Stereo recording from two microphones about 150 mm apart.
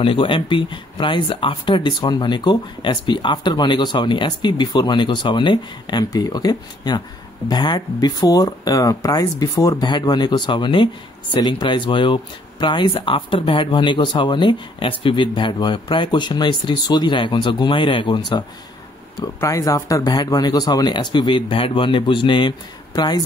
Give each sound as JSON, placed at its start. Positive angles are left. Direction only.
{"t": 0.0, "sound": "speech", "side_deg": 35}